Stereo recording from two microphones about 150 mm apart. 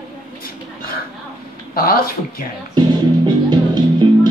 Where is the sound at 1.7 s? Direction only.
80° left.